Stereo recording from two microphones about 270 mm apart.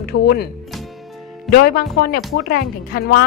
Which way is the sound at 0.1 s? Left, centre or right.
Left.